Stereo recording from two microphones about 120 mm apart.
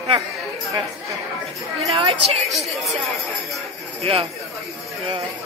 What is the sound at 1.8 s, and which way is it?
Speech, 50° right (ahead or behind).